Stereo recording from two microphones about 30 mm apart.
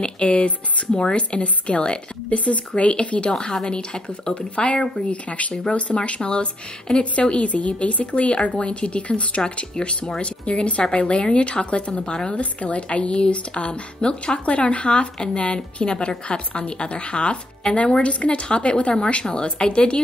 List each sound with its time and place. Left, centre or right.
0.2 s speech: left
4.4 s speech: left
4.7 s speech: left
5.1 s speech: left
12.1 s speech: left
12.4 s speech: left
15.5 s speech: left